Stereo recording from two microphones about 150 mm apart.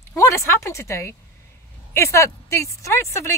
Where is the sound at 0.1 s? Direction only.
20° left (ahead or behind).